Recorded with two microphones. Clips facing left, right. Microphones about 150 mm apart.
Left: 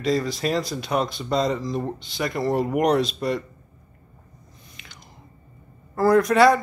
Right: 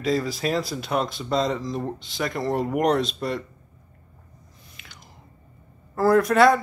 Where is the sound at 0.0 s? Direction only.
5° right (ahead or behind).